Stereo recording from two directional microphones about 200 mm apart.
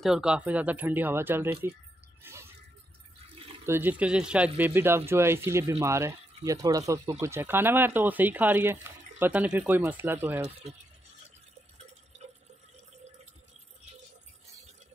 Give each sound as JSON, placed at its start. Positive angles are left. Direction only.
{"t": 0.0, "sound": "speech", "side_deg": -5}
{"t": 2.2, "sound": "shatter", "side_deg": -10}
{"t": 3.6, "sound": "speech", "side_deg": -10}